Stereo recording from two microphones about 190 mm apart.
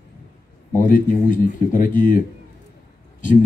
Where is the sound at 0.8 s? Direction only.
45° left (ahead or behind).